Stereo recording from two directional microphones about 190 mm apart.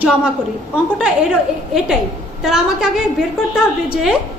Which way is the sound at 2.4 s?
5° right (ahead or behind).